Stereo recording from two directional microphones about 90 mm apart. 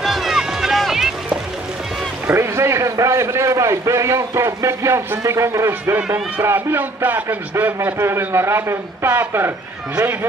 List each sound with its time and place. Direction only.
0.0 s music: centre (ahead or behind)
2.2 s a man's voice: 30° right (ahead or behind)